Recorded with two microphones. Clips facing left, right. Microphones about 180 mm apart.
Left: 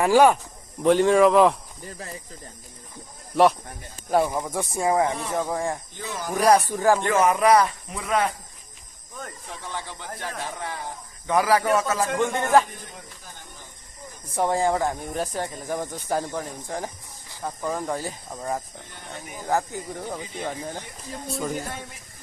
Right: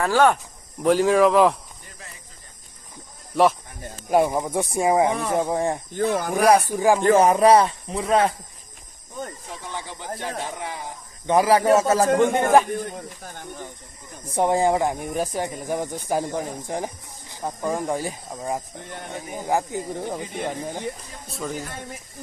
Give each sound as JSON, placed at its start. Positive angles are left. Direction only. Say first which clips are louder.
{"t": 0.0, "sound": "speech", "louder": "left 2 dB", "side_deg": 15}
{"t": 0.8, "sound": "speech", "louder": "even", "side_deg": 0}
{"t": 4.1, "sound": "speech", "louder": "right 3 dB", "side_deg": -15}
{"t": 5.9, "sound": "speech", "louder": "right 7 dB", "side_deg": -55}
{"t": 6.4, "sound": "speech", "louder": "right 1 dB", "side_deg": -10}
{"t": 7.0, "sound": "speech", "louder": "right 5 dB", "side_deg": -35}
{"t": 9.7, "sound": "speech", "louder": "right 2 dB", "side_deg": -15}
{"t": 11.2, "sound": "speech", "louder": "right 4 dB", "side_deg": -25}
{"t": 12.2, "sound": "speech", "louder": "left 1 dB", "side_deg": -20}
{"t": 12.7, "sound": "speech", "louder": "right 13 dB", "side_deg": -50}
{"t": 14.3, "sound": "speech", "louder": "right 3 dB", "side_deg": -20}
{"t": 18.9, "sound": "speech", "louder": "right 6 dB", "side_deg": -60}
{"t": 19.4, "sound": "speech", "louder": "right 1 dB", "side_deg": -15}
{"t": 21.3, "sound": "speech", "louder": "left 2 dB", "side_deg": 0}